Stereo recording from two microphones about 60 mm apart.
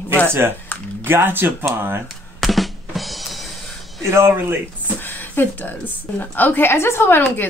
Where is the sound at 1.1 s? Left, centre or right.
Right.